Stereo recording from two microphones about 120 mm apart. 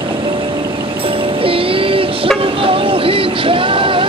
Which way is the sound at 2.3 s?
50° right (ahead or behind).